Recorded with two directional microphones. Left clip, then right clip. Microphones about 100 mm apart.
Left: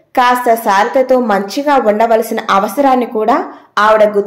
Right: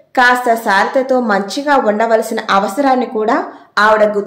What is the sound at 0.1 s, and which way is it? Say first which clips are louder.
A woman's voice: left 1 dB; 20° left (ahead or behind).